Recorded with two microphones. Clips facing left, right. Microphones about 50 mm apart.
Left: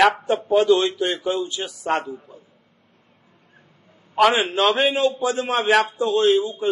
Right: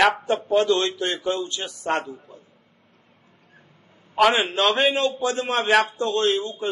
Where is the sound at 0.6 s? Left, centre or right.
Centre.